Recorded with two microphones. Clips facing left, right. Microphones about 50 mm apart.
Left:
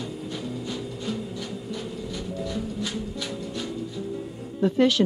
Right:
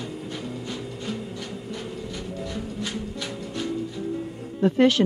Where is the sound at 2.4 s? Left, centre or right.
Right.